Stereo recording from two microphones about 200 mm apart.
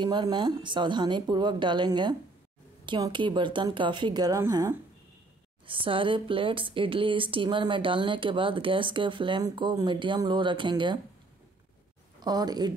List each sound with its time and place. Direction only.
0.0 s speech: 25° right (ahead or behind)
12.2 s speech: 20° right (ahead or behind)